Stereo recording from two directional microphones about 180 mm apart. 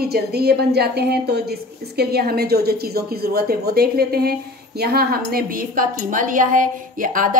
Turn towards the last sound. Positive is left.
turn(degrees=-50)  # may be behind; listen again after turning